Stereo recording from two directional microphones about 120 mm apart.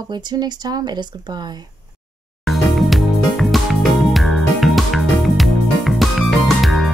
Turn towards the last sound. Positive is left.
turn(degrees=0)  # may be behind; listen again after turning